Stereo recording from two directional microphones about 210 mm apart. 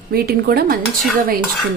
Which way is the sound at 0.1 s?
45° right (ahead or behind).